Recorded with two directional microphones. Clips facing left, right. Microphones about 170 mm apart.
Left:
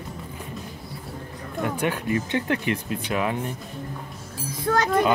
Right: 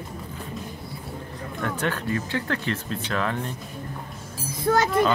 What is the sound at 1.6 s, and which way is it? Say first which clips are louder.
Speech: left 2 dB; 15° left (ahead or behind).